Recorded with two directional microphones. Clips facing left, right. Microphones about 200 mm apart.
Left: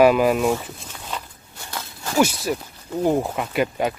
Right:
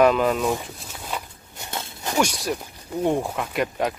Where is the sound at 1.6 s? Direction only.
20° right (ahead or behind).